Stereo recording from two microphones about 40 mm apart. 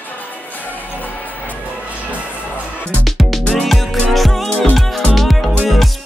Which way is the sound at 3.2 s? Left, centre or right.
Centre.